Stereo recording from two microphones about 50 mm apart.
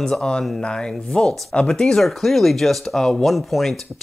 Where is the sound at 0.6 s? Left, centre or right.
Centre.